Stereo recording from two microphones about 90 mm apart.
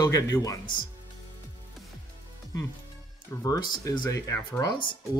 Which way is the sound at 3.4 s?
45° left (ahead or behind).